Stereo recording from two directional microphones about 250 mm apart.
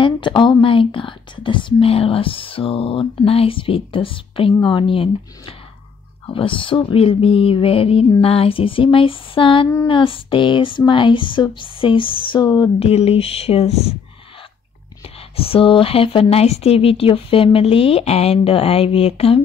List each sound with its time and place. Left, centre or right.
0.0 s speech: centre
15.3 s speech: left